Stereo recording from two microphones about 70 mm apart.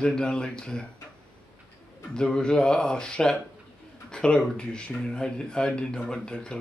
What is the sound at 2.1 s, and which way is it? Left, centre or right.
Speech, centre.